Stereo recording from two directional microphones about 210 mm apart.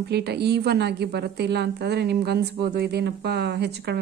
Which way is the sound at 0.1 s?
50° right (ahead or behind).